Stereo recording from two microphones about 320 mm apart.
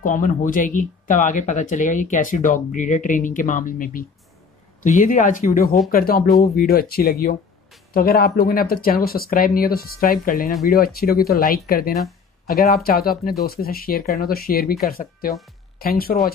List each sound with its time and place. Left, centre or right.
0.0 s speech: left